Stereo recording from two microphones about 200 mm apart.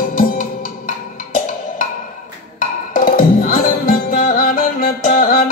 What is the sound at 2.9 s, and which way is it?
Music, 45° left (ahead or behind).